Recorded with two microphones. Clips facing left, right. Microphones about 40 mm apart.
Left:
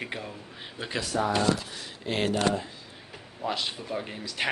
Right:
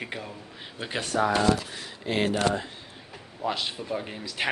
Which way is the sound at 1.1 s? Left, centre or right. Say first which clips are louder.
Right 3 dB; right.